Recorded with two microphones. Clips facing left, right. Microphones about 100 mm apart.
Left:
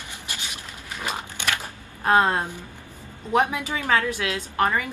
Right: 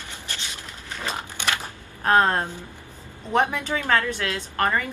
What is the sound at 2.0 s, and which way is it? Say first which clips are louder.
A woman's voice: even; 10° left (ahead or behind).